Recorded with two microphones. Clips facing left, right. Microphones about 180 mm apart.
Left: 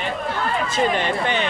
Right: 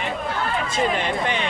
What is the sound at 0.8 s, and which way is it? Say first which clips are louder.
Speech: left 2 dB; centre (ahead or behind).